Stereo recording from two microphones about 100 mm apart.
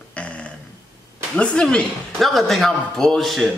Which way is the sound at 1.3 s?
5° left (ahead or behind).